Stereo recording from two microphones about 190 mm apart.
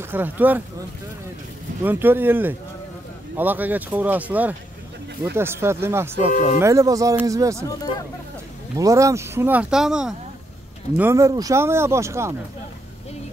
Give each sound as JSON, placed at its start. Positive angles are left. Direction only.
{"t": 0.1, "sound": "speech", "side_deg": -10}
{"t": 1.8, "sound": "speech", "side_deg": -10}
{"t": 6.3, "sound": "speech", "side_deg": 40}
{"t": 6.6, "sound": "speech", "side_deg": -15}
{"t": 8.7, "sound": "speech", "side_deg": -15}
{"t": 11.0, "sound": "speech", "side_deg": -15}